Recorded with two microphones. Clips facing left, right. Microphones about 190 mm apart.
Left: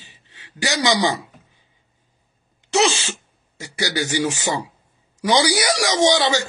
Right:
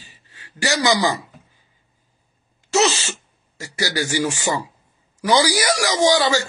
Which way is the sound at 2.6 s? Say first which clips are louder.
Even; 10° left (ahead or behind).